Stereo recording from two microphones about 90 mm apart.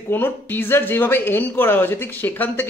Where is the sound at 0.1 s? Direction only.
25° left (ahead or behind).